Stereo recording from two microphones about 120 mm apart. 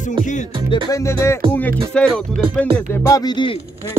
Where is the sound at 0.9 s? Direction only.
25° left (ahead or behind).